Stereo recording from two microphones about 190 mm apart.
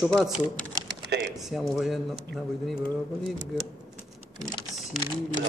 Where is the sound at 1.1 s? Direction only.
60° right (ahead or behind).